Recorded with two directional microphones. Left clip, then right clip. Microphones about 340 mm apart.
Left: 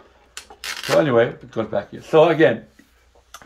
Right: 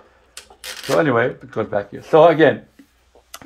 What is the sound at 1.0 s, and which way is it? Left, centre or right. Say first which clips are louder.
Speech: even; centre.